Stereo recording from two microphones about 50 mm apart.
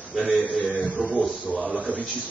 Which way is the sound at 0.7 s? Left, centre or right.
Right.